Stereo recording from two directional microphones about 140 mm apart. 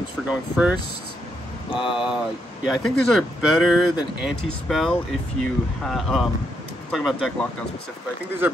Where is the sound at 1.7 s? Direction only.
35° left (ahead or behind).